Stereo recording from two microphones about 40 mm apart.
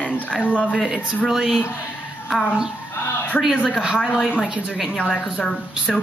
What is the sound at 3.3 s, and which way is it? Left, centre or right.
Speech, left.